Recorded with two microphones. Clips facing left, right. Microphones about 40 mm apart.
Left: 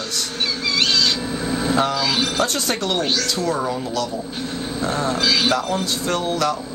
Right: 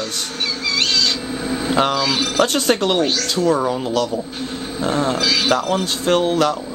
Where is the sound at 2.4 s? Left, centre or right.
Right.